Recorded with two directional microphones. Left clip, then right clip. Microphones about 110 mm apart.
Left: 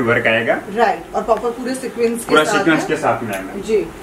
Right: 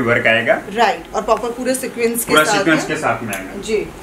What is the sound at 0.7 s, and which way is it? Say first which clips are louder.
Speech: even; 15° right (ahead or behind).